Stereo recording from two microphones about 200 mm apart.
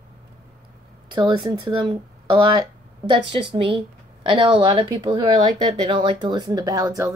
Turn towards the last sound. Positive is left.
turn(degrees=-15)  # may be behind; listen again after turning